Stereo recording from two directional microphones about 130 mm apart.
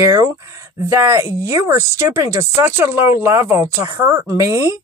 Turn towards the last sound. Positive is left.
turn(degrees=-20)  # may be behind; listen again after turning